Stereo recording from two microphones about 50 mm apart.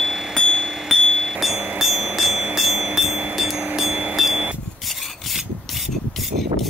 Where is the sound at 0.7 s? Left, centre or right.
Centre.